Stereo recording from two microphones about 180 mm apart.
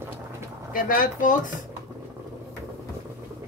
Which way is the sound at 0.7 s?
50° left (ahead or behind).